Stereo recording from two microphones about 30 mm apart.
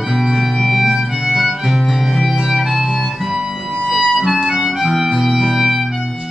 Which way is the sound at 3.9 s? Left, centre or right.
Centre.